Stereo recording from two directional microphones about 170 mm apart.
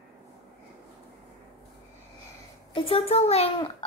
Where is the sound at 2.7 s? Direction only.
35° left (ahead or behind).